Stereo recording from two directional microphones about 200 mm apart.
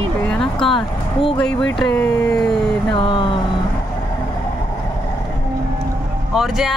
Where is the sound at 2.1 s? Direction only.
15° left (ahead or behind).